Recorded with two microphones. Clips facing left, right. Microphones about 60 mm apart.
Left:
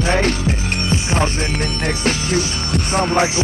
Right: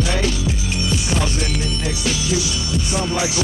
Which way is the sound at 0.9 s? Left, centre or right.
Left.